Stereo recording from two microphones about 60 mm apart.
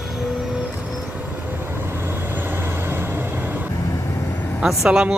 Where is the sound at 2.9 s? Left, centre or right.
Right.